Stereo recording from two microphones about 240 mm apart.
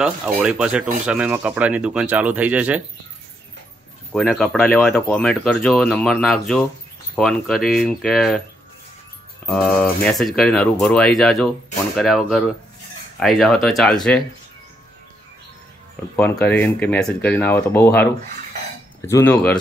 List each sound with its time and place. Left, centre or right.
0.0 s speech: centre
4.1 s speech: centre
9.5 s speech: centre
16.2 s speech: centre